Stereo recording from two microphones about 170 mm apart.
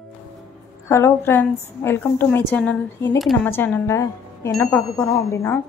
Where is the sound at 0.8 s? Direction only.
15° left (ahead or behind).